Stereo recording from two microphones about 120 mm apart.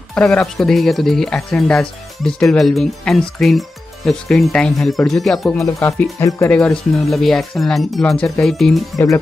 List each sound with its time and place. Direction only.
0.1 s speech: 10° left (ahead or behind)
6.1 s speech: 25° left (ahead or behind)
6.5 s speech: 10° left (ahead or behind)
8.9 s speech: 25° left (ahead or behind)